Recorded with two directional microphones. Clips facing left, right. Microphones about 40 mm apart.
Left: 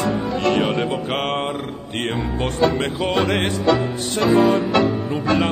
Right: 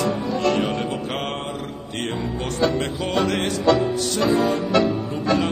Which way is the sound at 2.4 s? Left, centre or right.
Left.